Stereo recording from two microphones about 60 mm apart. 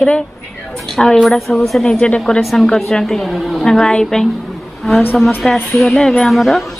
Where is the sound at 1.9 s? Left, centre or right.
Centre.